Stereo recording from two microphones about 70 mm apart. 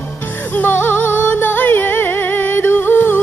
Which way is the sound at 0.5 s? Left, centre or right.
Left.